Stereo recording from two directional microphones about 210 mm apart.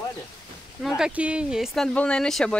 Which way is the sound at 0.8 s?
5° right (ahead or behind).